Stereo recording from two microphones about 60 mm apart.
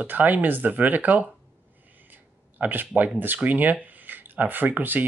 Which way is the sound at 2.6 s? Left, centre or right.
Right.